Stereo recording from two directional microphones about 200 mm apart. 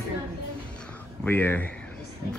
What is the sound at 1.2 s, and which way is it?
Speech, 10° left (ahead or behind).